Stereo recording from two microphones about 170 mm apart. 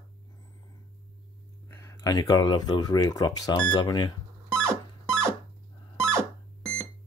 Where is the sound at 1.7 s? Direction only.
20° left (ahead or behind).